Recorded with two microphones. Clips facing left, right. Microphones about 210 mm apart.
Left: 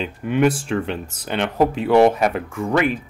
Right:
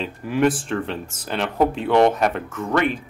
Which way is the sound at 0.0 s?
Centre (ahead or behind).